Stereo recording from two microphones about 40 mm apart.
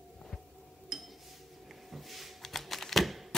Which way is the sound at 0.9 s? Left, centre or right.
Centre.